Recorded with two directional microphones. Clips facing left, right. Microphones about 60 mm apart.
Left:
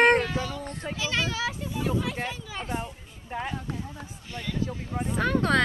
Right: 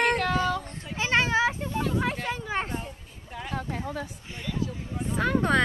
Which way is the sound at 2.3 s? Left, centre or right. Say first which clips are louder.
Right 5 dB; right.